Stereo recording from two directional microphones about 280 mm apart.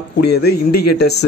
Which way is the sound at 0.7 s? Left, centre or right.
Left.